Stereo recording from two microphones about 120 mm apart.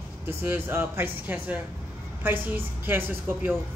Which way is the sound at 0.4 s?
15° right (ahead or behind).